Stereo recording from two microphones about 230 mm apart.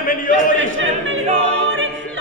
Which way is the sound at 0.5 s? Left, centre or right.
Right.